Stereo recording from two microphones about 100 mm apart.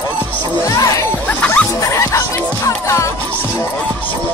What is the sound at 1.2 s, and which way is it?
Music, 15° left (ahead or behind).